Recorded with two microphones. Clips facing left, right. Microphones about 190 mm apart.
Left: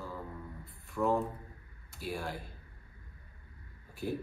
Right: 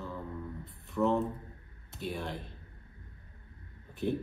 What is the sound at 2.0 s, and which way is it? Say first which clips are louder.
Speech: right 1 dB; centre (ahead or behind).